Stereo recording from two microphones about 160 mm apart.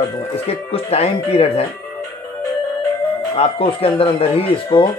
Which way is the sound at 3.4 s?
35° left (ahead or behind).